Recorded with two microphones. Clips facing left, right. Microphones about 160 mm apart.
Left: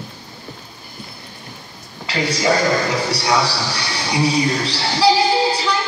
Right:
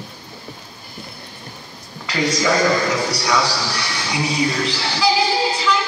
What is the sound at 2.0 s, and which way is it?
Speech, 30° left (ahead or behind).